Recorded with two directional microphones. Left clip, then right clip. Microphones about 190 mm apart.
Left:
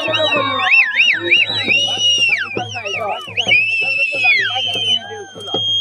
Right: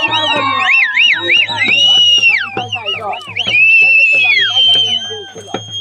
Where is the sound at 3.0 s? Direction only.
10° left (ahead or behind).